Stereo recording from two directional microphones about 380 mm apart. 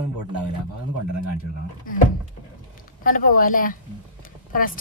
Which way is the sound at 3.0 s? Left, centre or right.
Left.